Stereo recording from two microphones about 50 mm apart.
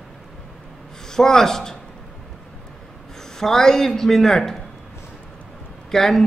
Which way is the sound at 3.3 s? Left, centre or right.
Centre.